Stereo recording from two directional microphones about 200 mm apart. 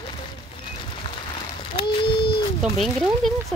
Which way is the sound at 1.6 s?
25° left (ahead or behind).